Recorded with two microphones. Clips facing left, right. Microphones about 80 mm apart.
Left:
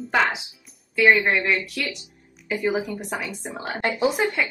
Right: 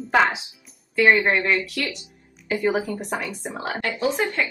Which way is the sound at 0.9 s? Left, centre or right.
Centre.